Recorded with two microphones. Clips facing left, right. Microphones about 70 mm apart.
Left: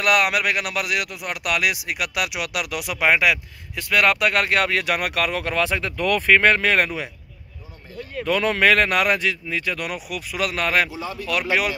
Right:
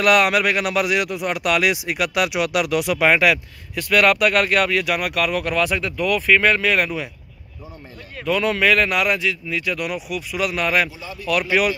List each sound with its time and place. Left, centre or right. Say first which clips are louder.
0.0 s speech: right 3 dB; centre; by 6.0 s left
6.0 s speech: even; left
8.4 s speech: even; left